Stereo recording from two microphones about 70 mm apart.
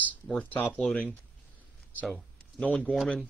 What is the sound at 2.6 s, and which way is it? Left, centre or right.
Speech, centre.